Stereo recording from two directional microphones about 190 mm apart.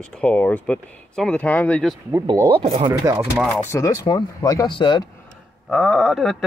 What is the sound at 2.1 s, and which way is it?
Speech, 15° right (ahead or behind).